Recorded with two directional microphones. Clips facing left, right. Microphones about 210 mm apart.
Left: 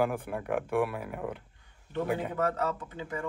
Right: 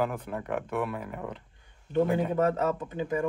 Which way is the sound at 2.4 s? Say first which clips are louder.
Right 4 dB; 20° right (ahead or behind).